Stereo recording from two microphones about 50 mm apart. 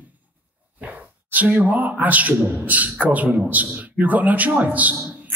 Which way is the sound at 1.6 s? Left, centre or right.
Right.